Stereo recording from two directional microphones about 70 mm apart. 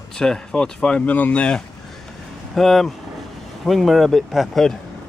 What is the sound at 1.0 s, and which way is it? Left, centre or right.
Speech, left.